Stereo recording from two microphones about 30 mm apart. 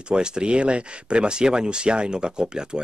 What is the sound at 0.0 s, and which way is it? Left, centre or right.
A man's voice, right.